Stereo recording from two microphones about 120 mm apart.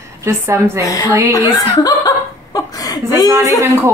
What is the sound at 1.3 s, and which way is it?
Chuckle, 30° left (ahead or behind).